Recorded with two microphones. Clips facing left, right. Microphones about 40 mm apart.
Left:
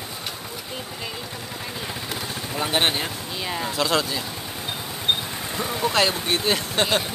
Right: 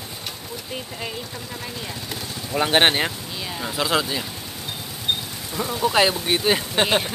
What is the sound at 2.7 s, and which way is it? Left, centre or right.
Speech, right.